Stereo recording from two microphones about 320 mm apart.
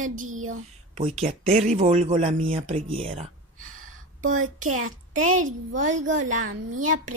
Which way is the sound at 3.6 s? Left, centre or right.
Right.